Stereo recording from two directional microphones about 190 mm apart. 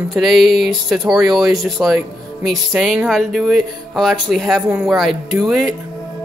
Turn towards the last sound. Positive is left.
turn(degrees=0)  # may be behind; listen again after turning